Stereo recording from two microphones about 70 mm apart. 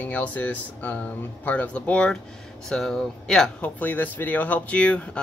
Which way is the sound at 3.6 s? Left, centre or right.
Left.